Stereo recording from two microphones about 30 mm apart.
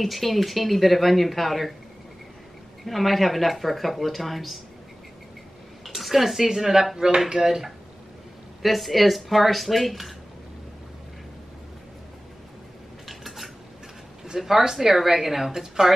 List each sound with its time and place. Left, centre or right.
0.0 s speech: centre
2.8 s speech: centre
5.9 s a woman's voice: centre
8.6 s speech: centre
13.0 s cutlery: centre
14.4 s a woman's voice: centre